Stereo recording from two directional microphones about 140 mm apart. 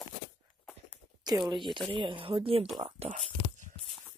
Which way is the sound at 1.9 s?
40° right (ahead or behind).